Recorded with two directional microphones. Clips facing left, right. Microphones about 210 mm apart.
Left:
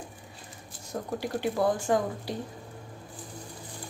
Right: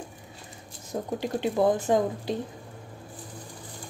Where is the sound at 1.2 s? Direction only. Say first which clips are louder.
Right 3 dB; 20° right (ahead or behind).